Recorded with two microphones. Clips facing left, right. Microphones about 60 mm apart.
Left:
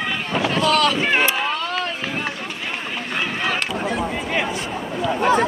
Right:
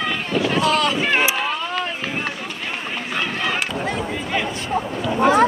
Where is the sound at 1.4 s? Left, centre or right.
Centre.